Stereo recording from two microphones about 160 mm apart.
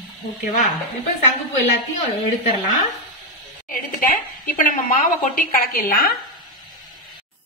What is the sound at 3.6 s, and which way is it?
A woman's voice, 60° left (ahead or behind).